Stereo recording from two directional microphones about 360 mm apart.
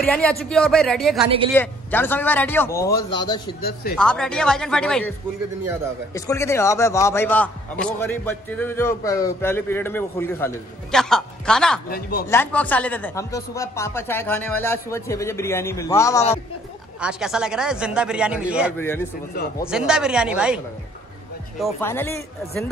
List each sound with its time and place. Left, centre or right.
0.0 s a man's voice: centre
6.1 s a man's voice: centre
11.9 s speech: left
12.3 s a man's voice: centre
17.0 s speech: centre